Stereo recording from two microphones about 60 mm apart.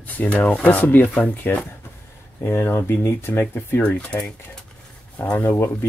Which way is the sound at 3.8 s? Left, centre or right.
Left.